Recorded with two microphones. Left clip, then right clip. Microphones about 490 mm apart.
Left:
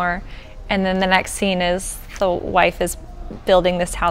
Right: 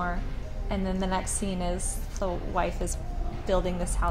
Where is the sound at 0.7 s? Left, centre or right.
Left.